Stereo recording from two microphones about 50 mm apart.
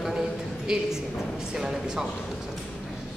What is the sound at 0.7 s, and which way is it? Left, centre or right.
A man's voice, centre.